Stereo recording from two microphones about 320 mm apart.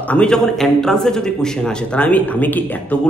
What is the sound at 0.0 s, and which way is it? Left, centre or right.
A man's voice, centre.